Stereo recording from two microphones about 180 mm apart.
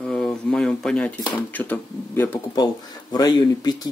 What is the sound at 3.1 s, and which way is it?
Speech, 20° left (ahead or behind).